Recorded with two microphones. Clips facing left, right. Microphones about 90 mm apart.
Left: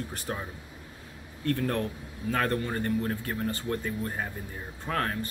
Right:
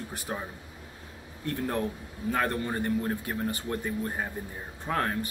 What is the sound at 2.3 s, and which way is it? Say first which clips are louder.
Speech: left 1 dB; 15° right (ahead or behind).